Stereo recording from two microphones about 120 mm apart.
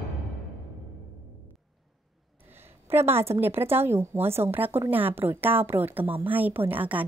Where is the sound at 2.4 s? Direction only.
20° right (ahead or behind).